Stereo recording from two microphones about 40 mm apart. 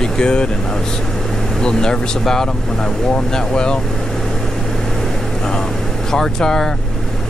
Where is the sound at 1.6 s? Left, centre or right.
Centre.